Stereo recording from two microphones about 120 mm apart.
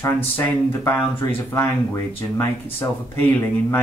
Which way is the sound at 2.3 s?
20° left (ahead or behind).